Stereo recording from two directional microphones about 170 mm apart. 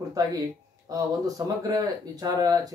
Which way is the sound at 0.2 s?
20° right (ahead or behind).